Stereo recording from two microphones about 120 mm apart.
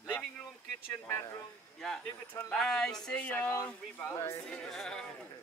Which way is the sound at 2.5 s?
5° left (ahead or behind).